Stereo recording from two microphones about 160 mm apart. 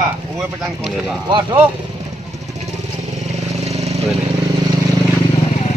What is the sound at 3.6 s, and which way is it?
Vehicle, 40° right (ahead or behind).